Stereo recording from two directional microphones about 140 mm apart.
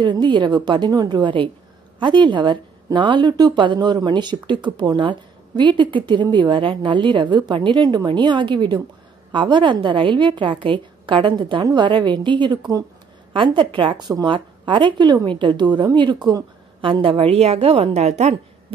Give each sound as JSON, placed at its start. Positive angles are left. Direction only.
{"t": 0.0, "sound": "a woman's voice", "side_deg": -30}